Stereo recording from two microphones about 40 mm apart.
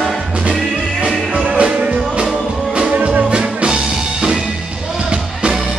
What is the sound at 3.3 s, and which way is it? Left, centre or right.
Music, right.